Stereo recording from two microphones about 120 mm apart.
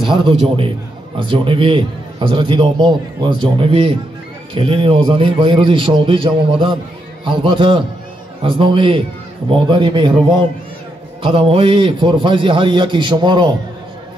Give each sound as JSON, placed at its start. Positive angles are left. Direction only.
{"t": 0.0, "sound": "a man's voice", "side_deg": -40}
{"t": 11.2, "sound": "a man's voice", "side_deg": -50}